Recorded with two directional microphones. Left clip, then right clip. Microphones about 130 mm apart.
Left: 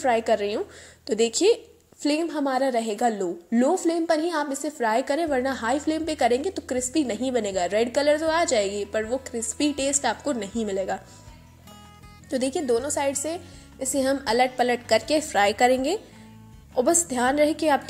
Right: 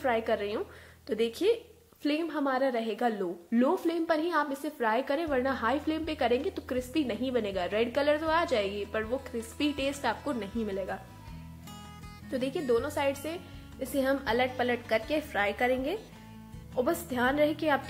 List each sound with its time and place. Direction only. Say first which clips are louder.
0.0 s a woman's voice: left 7 dB; 35° left (ahead or behind)
2.0 s a woman's voice: left 5 dB; 30° left (ahead or behind)
12.3 s a woman's voice: left 7 dB; 35° left (ahead or behind)
12.6 s a woman's voice: left 1 dB; 20° left (ahead or behind); by 16.0 s 50° left (ahead or behind)
16.7 s a woman's voice: left 7 dB; 35° left (ahead or behind)